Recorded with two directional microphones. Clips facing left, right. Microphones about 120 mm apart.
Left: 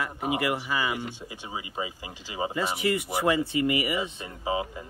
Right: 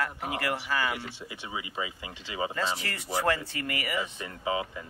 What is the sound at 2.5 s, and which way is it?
Speech, 15° left (ahead or behind).